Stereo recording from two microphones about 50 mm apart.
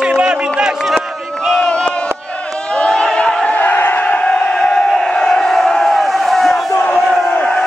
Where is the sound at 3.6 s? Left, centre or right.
Left; by 6.6 s centre.